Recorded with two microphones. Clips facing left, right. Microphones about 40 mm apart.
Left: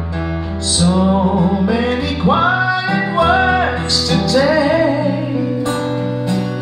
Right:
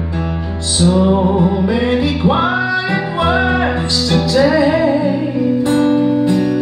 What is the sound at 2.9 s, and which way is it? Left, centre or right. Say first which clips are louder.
Music: left 2 dB; centre.